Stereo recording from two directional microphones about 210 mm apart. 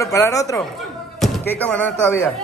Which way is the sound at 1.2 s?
5° left (ahead or behind).